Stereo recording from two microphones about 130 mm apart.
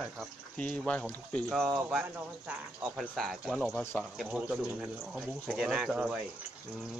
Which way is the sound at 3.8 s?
20° left (ahead or behind).